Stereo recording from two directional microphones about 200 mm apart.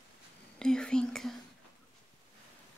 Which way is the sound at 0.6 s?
5° left (ahead or behind).